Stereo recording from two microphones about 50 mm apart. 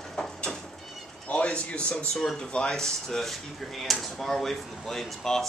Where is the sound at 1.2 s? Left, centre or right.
Left.